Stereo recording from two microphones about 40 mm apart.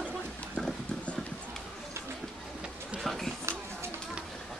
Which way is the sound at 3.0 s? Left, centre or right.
Centre.